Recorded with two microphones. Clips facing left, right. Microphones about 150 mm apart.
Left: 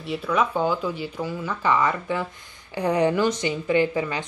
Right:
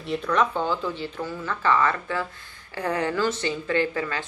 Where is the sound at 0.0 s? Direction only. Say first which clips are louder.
Even; 5° left (ahead or behind).